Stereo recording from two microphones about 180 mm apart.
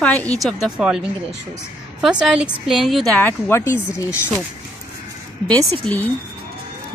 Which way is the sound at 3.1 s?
10° left (ahead or behind).